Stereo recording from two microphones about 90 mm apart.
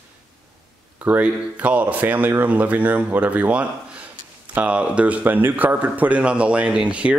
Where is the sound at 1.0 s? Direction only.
15° right (ahead or behind).